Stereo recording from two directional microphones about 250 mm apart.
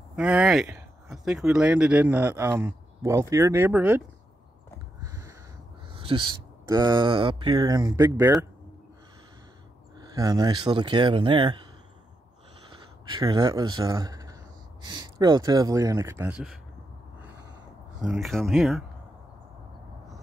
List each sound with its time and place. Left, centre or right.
0.1 s speech: centre
5.0 s a sound: centre
5.9 s speech: centre
9.9 s speech: centre
13.0 s speech: centre
18.0 s speech: centre